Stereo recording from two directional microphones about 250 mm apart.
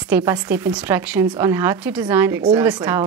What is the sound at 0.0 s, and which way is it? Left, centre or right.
Speech, centre.